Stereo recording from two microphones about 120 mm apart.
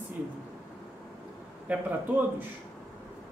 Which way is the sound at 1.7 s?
15° right (ahead or behind).